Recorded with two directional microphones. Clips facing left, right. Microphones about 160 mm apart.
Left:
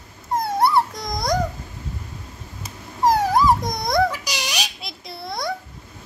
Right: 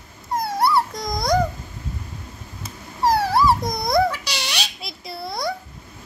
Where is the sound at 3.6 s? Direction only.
Centre (ahead or behind).